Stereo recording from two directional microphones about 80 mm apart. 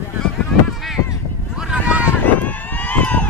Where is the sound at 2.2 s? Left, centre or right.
Left.